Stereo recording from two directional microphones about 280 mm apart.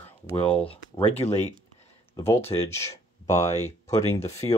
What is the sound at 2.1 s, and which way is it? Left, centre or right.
Speech, centre.